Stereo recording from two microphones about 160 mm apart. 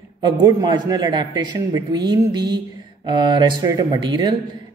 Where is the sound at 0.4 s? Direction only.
25° right (ahead or behind).